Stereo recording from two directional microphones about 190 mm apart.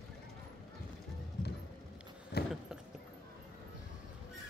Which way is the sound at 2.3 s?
55° left (ahead or behind).